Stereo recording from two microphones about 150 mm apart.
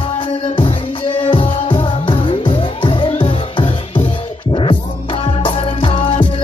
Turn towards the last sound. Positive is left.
turn(degrees=35)  # may be behind; listen again after turning